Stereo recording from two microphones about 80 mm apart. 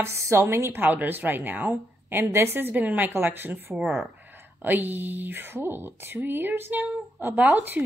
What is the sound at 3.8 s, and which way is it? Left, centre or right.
Speech, centre.